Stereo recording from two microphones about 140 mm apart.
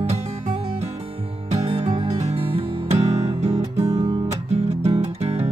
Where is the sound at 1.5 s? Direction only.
35° right (ahead or behind).